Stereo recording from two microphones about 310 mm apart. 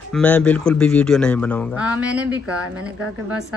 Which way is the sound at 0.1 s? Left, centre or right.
Centre.